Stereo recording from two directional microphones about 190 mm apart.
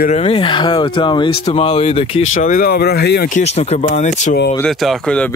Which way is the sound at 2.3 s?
45° left (ahead or behind).